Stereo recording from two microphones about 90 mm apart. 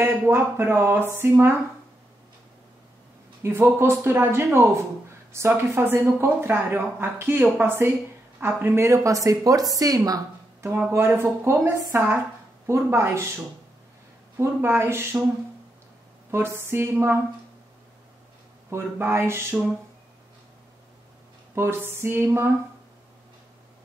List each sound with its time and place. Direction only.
0.0 s speech: 25° right (ahead or behind)
3.4 s a woman's voice: 25° right (ahead or behind); by 10.2 s 40° right (ahead or behind)
10.6 s a woman's voice: 30° right (ahead or behind)
14.4 s speech: 25° right (ahead or behind)
16.3 s speech: 30° right (ahead or behind)
18.7 s speech: 25° right (ahead or behind)
21.5 s speech: 30° right (ahead or behind)